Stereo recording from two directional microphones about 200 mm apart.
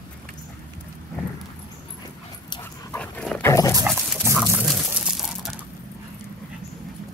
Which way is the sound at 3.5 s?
15° left (ahead or behind).